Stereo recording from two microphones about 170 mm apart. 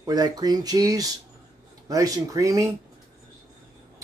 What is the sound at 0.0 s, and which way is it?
Speech, 25° right (ahead or behind).